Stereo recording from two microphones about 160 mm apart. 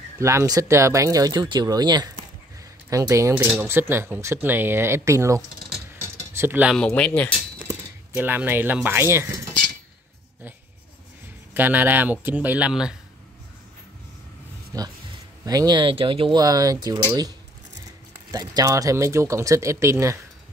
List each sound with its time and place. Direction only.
0.2 s speech: 20° right (ahead or behind)
5.9 s a sound: 15° right (ahead or behind)
6.7 s speech: 5° left (ahead or behind)
8.2 s speech: 10° right (ahead or behind)
11.5 s speech: 10° right (ahead or behind)
14.7 s speech: 20° right (ahead or behind)
18.3 s speech: 25° right (ahead or behind)